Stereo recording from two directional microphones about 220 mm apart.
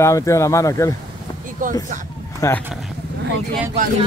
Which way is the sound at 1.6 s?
35° right (ahead or behind).